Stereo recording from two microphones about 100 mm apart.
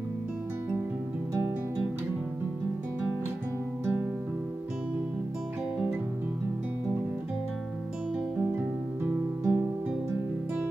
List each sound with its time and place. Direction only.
3.8 s music: 20° right (ahead or behind)
9.4 s music: 30° right (ahead or behind)